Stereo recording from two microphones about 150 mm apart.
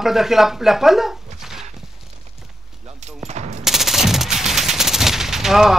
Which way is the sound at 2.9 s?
50° right (ahead or behind).